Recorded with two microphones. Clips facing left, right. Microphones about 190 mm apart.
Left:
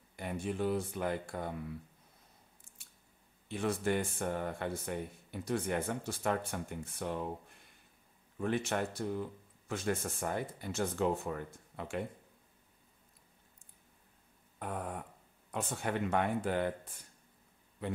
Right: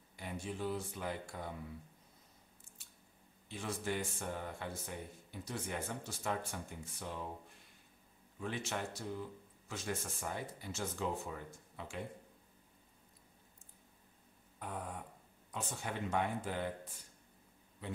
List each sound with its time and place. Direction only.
0.1 s speech: 55° left (ahead or behind)
3.4 s speech: 60° left (ahead or behind)
8.4 s speech: 55° left (ahead or behind)
14.6 s a sound: 55° left (ahead or behind)
15.5 s speech: 60° left (ahead or behind)